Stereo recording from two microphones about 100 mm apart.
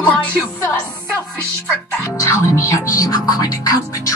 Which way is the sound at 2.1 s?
30° left (ahead or behind).